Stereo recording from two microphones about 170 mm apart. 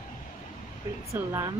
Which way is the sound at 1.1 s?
15° right (ahead or behind).